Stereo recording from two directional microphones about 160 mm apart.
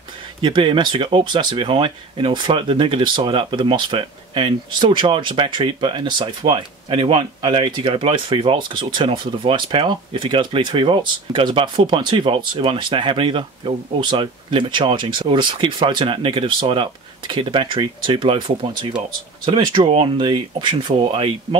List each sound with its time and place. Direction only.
0.4 s speech: 30° right (ahead or behind)